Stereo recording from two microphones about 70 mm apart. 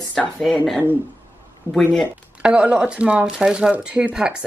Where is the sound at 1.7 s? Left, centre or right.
Right.